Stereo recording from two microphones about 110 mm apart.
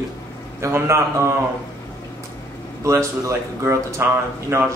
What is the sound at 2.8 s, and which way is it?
Speech, 25° right (ahead or behind).